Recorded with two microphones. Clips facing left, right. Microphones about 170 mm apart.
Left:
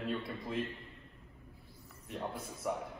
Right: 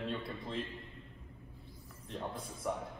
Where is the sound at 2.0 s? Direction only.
5° left (ahead or behind).